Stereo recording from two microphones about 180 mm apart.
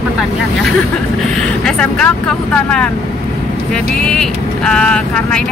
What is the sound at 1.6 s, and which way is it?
Speech, 5° left (ahead or behind).